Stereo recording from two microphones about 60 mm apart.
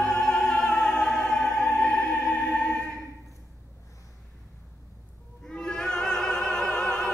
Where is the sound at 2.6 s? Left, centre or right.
Left.